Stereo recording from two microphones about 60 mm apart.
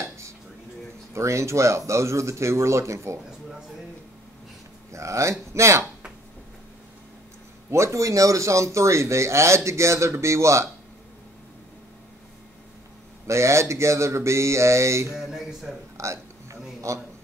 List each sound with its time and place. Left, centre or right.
1.1 s speech: right
4.9 s speech: right
7.7 s speech: right
13.3 s speech: right
15.1 s speech: centre
16.0 s speech: right